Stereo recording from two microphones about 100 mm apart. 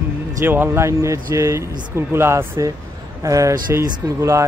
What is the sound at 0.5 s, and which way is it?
Speech, 25° right (ahead or behind).